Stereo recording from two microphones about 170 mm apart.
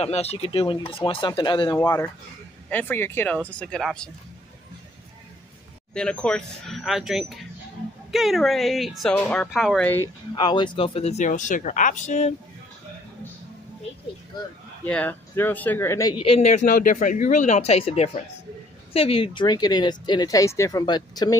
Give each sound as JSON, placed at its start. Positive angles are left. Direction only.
{"t": 0.0, "sound": "a man's voice", "side_deg": 35}
{"t": 1.8, "sound": "speech", "side_deg": 15}
{"t": 5.9, "sound": "speech", "side_deg": 5}
{"t": 10.3, "sound": "a man's voice", "side_deg": 25}
{"t": 14.9, "sound": "a man's voice", "side_deg": 10}